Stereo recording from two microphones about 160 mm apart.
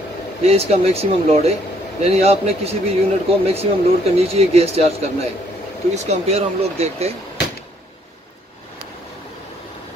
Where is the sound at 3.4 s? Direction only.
40° right (ahead or behind).